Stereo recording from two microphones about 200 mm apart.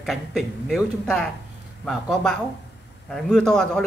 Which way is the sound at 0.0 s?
Centre (ahead or behind).